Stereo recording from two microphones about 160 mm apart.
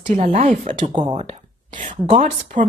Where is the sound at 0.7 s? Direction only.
30° right (ahead or behind).